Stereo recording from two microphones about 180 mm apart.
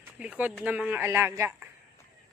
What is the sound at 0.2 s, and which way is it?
Speech, 5° right (ahead or behind).